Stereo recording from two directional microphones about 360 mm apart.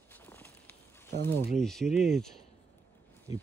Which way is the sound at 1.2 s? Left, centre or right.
Centre.